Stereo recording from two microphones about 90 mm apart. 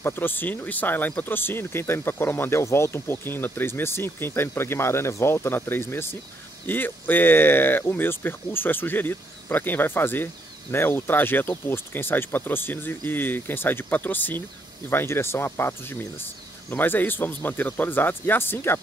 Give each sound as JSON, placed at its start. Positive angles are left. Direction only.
{"t": 0.0, "sound": "speech", "side_deg": 25}